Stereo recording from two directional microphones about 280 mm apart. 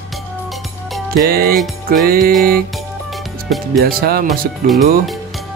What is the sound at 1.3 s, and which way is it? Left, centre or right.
Speech, right.